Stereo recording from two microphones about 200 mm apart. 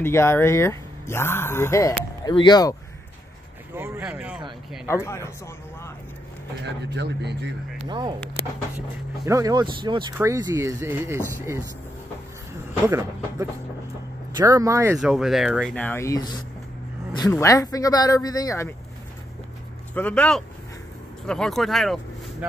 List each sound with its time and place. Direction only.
0.0 s speech: 10° left (ahead or behind)
3.7 s speech: 10° right (ahead or behind)
4.8 s speech: 15° left (ahead or behind)
6.6 s speech: 60° right (ahead or behind)
9.2 s speech: 15° right (ahead or behind)
12.8 s speech: 15° right (ahead or behind)
15.0 s speech: 5° right (ahead or behind); by 18.7 s 15° left (ahead or behind)
19.9 s speech: 5° left (ahead or behind)